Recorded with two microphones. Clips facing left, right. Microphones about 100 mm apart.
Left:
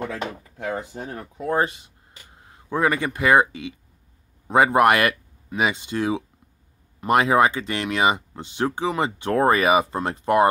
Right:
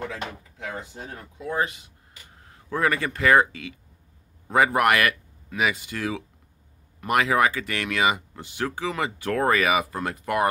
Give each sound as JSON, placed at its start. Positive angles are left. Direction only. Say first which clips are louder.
{"t": 0.1, "sound": "speech", "louder": "left 4 dB", "side_deg": 40}
{"t": 1.6, "sound": "speech", "louder": "left 3 dB", "side_deg": 30}